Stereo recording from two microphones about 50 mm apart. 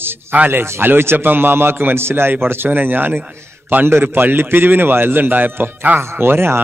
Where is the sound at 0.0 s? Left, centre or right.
Right.